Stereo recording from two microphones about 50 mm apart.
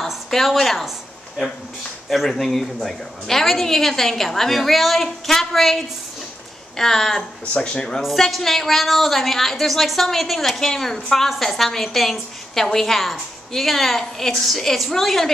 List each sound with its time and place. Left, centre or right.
0.0 s a woman's voice: centre
2.0 s a woman's voice: centre
7.5 s speech: centre
8.0 s a woman's voice: centre